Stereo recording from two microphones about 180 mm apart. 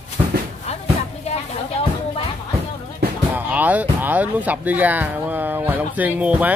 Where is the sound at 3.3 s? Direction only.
10° right (ahead or behind).